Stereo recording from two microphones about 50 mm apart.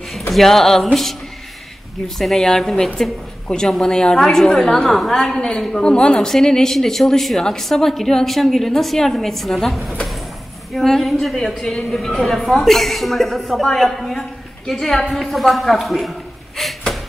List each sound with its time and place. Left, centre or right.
0.3 s speech: centre
2.0 s a woman's voice: centre